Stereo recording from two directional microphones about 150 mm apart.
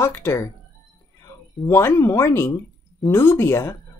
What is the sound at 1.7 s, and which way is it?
Speech, 15° left (ahead or behind).